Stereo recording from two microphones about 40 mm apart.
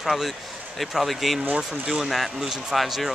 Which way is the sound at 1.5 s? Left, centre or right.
Right.